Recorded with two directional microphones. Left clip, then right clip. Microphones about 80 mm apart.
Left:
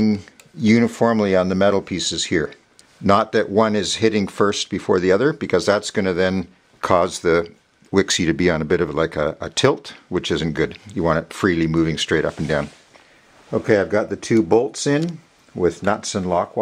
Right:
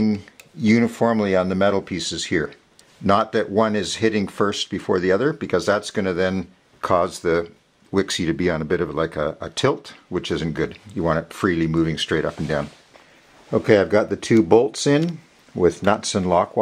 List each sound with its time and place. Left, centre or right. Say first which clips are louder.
0.0 s speech: left 2 dB; left
13.5 s speech: right 1 dB; right